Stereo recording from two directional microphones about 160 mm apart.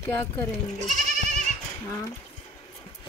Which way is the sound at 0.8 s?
50° right (ahead or behind).